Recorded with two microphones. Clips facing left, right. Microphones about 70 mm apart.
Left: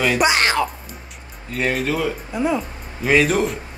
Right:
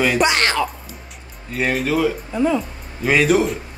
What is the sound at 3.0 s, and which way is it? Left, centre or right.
Speech, centre.